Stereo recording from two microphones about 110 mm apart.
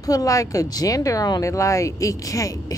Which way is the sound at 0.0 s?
35° left (ahead or behind).